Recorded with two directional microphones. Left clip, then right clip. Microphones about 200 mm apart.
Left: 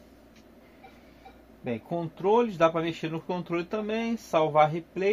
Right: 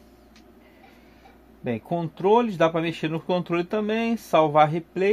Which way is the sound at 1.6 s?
50° right (ahead or behind).